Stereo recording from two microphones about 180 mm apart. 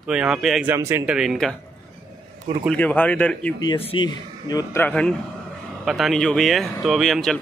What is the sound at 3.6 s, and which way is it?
Speech, 25° left (ahead or behind).